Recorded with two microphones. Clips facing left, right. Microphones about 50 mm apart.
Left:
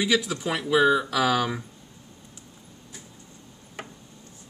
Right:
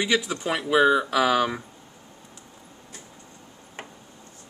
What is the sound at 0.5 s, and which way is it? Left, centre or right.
Speech, centre.